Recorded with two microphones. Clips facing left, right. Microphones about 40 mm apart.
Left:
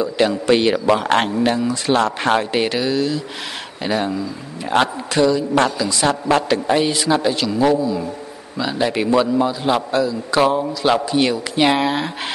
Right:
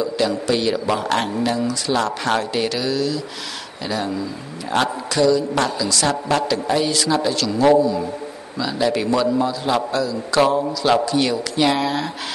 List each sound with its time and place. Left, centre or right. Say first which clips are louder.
0.5 s a man's voice: left 7 dB; left
0.7 s a man's voice: left 4 dB; left